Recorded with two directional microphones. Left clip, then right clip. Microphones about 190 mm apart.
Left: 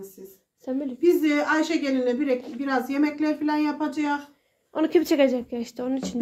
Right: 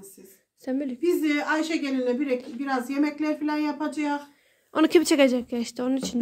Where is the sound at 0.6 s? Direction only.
20° right (ahead or behind).